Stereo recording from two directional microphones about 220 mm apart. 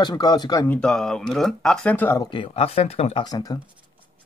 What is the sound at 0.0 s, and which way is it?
Speech, 20° left (ahead or behind).